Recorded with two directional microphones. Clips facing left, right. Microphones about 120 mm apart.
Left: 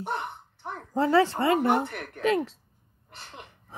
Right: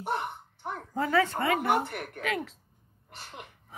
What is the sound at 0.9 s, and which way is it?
Speech, 30° left (ahead or behind).